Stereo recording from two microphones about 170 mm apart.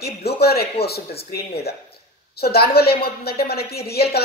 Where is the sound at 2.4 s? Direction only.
65° left (ahead or behind).